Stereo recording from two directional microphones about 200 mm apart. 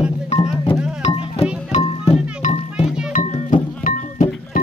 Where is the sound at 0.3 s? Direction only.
35° left (ahead or behind).